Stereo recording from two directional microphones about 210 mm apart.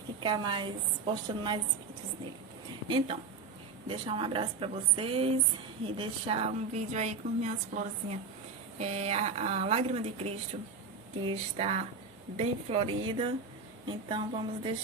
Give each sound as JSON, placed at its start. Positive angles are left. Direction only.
{"t": 0.2, "sound": "a woman's voice", "side_deg": -20}
{"t": 3.8, "sound": "a woman's voice", "side_deg": -25}